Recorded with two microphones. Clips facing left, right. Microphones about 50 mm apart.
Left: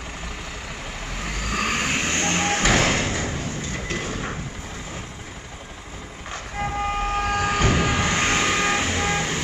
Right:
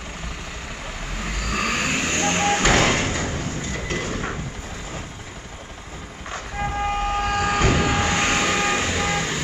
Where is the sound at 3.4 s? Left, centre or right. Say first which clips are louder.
Right 1 dB; right.